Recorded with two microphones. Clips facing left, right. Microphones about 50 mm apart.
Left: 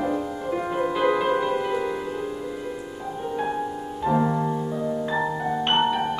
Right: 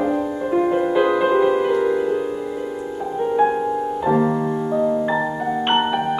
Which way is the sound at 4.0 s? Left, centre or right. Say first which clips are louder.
Right 2 dB; right.